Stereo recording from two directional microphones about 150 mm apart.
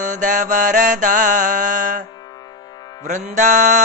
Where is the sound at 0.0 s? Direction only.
60° right (ahead or behind).